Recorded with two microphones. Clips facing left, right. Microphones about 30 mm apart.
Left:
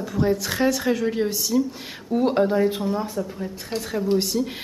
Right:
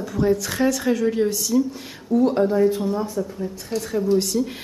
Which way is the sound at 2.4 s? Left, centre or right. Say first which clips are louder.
Right 2 dB; left.